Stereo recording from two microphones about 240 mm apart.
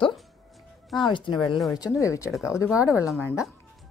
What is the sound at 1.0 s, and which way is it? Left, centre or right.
A woman's voice, centre.